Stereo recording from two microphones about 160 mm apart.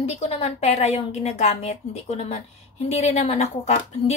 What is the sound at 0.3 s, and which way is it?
A woman's voice, 40° left (ahead or behind).